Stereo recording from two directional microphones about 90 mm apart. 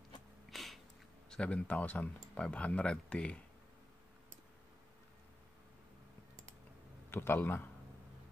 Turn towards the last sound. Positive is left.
turn(degrees=25)  # may be behind; listen again after turning